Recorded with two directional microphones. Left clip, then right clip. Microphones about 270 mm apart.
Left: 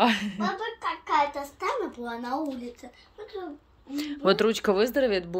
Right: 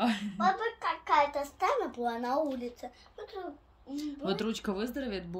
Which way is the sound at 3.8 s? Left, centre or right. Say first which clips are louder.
Left 10 dB; centre.